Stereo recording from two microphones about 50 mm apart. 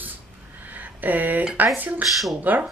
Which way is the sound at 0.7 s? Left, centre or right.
Right.